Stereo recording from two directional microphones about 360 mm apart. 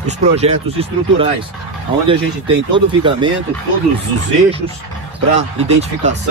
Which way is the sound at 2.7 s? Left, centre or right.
Centre.